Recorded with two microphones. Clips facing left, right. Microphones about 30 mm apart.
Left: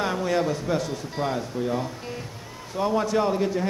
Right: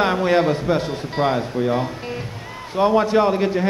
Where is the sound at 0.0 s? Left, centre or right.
Right.